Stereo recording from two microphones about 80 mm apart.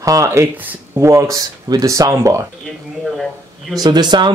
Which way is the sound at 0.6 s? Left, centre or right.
Right.